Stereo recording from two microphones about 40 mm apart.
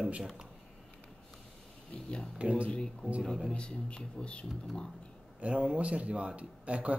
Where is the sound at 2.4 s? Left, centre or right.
Right.